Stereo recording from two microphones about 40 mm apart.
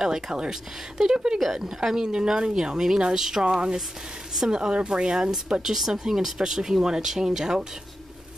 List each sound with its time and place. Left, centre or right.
0.0 s speech: centre